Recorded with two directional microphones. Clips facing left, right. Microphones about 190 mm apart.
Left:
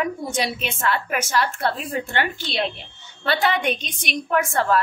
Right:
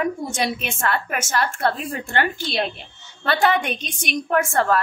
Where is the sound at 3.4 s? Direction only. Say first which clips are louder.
Right 4 dB; 45° right (ahead or behind).